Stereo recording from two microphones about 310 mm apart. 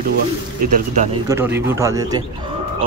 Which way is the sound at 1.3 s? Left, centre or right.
Centre.